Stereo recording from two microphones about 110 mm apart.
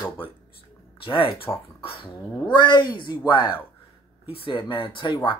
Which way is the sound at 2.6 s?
40° left (ahead or behind).